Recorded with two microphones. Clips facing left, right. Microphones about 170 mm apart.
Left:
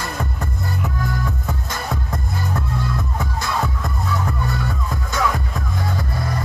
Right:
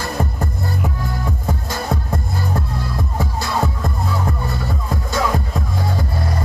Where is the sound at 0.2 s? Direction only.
35° right (ahead or behind).